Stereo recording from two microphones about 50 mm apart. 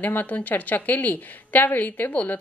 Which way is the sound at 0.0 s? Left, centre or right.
Left.